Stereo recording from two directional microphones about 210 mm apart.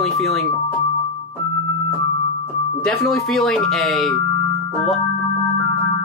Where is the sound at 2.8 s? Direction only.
5° left (ahead or behind).